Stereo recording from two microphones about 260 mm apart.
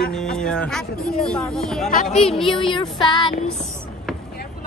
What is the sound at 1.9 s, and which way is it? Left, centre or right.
Speech, left.